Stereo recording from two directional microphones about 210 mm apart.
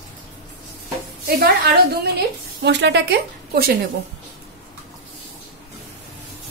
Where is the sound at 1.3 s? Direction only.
45° right (ahead or behind).